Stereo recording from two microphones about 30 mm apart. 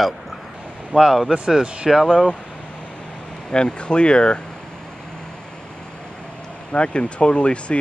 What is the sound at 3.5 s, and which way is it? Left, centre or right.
Speech, left.